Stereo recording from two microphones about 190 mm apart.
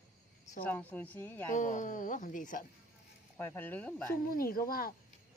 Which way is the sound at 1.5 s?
40° left (ahead or behind).